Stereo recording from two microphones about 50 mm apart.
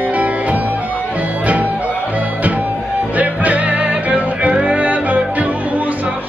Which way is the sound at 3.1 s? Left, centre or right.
Right.